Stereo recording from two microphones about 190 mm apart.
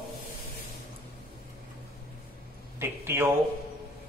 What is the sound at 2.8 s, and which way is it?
Speech, 15° right (ahead or behind).